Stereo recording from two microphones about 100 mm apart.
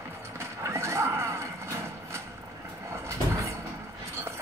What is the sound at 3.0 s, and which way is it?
Vehicle, 30° right (ahead or behind).